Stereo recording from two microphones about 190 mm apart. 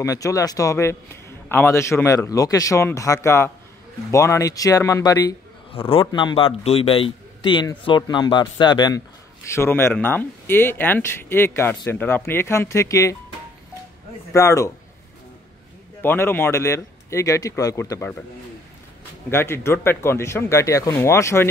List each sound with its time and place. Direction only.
0.0 s speech: 15° left (ahead or behind)
5.7 s a man's voice: 30° left (ahead or behind)
9.5 s speech: 15° left (ahead or behind)
14.3 s speech: 15° left (ahead or behind)
16.0 s speech: 10° left (ahead or behind)
19.3 s speech: 15° left (ahead or behind)